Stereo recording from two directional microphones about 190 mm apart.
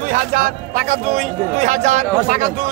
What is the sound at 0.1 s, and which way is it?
Speech, 45° right (ahead or behind).